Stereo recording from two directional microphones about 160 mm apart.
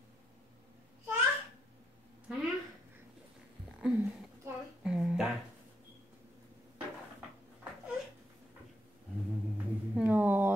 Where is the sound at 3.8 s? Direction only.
10° right (ahead or behind).